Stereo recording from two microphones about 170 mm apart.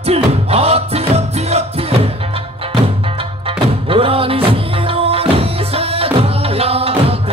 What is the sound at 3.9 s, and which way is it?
Music, 35° right (ahead or behind).